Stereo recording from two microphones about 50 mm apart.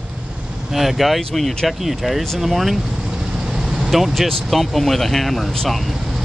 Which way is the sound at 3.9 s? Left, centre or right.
Centre.